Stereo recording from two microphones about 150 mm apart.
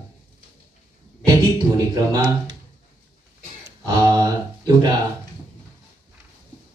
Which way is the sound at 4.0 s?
25° right (ahead or behind).